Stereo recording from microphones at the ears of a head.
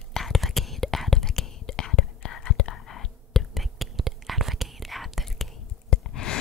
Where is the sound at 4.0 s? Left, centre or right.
Right.